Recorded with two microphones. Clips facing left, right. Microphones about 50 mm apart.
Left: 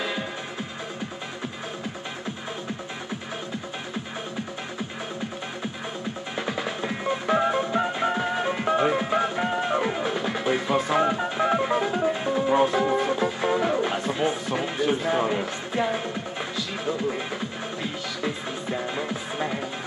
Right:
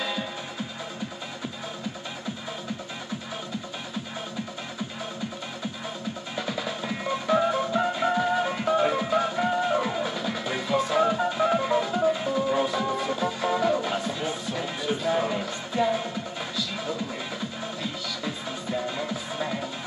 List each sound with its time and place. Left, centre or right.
6.3 s music: left
18.2 s music: left